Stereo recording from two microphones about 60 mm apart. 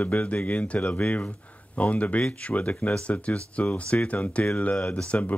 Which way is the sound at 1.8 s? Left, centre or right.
Left.